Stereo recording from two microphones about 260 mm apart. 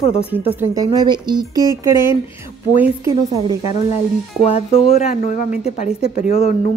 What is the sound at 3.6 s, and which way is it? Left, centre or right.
Speech, left.